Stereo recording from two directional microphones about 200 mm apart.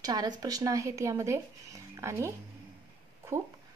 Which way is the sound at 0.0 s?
20° right (ahead or behind).